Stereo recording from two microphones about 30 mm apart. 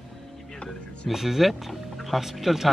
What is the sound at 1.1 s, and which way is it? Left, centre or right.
Speech, centre.